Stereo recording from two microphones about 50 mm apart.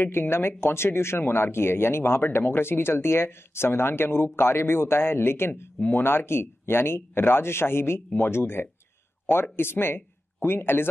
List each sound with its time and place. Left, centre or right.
0.0 s speech: left